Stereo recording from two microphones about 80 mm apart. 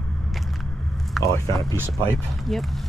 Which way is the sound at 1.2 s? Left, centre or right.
Centre.